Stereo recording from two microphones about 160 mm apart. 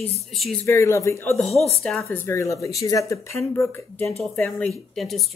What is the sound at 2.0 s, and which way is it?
Speech, 15° left (ahead or behind).